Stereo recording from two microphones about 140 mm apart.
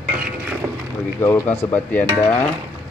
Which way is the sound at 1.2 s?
15° left (ahead or behind).